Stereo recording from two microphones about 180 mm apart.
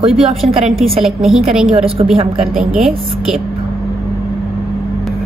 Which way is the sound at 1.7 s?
35° right (ahead or behind).